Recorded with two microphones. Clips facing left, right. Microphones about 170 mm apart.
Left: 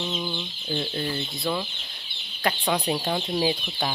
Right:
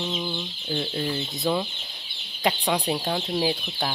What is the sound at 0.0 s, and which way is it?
Chicken, 5° right (ahead or behind).